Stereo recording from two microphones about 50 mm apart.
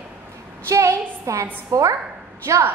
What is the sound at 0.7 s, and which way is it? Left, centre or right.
A woman's voice, right.